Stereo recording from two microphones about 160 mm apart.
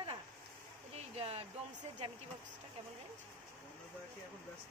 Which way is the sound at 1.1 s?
40° right (ahead or behind).